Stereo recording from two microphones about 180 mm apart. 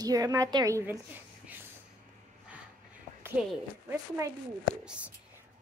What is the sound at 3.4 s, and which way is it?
Speech, 5° right (ahead or behind).